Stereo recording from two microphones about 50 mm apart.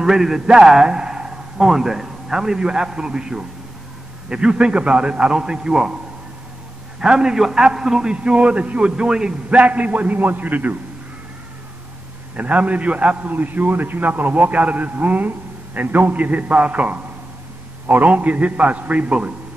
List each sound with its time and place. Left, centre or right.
0.0 s a man's voice: centre
7.0 s a man's voice: centre
9.5 s a man's voice: right
12.4 s a man's voice: right
13.2 s a man's voice: right
17.8 s a man's voice: right
18.1 s a man's voice: right